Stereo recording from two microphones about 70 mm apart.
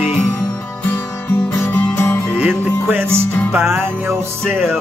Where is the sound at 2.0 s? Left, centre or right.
Left.